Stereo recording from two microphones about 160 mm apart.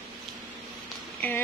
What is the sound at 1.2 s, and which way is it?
Speech, 10° left (ahead or behind).